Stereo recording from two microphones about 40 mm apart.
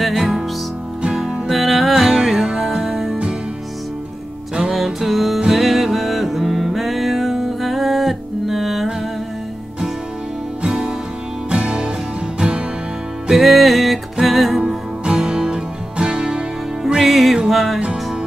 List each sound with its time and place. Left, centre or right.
0.0 s music: centre
1.5 s music: centre
4.7 s music: centre
10.6 s music: right
13.3 s music: centre
14.7 s music: right
16.9 s music: centre